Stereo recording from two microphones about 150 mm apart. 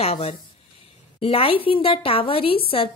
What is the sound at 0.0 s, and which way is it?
A woman's voice, 45° left (ahead or behind).